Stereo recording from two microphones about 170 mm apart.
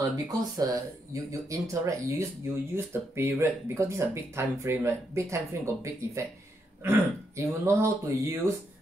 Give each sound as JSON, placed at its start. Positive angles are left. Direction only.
{"t": 0.3, "sound": "speech", "side_deg": -20}